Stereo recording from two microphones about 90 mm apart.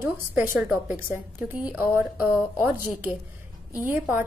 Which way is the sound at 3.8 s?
25° right (ahead or behind).